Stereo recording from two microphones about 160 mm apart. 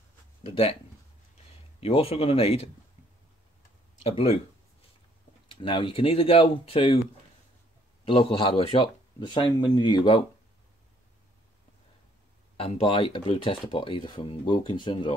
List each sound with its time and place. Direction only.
0.5 s speech: 35° left (ahead or behind)
1.8 s speech: 40° left (ahead or behind)
4.0 s speech: 35° left (ahead or behind)
5.5 s speech: 30° left (ahead or behind)
8.0 s speech: 35° left (ahead or behind)
12.5 s speech: 40° left (ahead or behind)